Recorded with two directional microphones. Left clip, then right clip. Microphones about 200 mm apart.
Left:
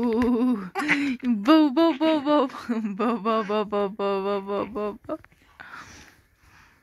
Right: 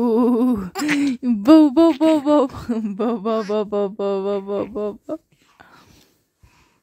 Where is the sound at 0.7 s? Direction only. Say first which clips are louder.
Right 2 dB; 25° right (ahead or behind).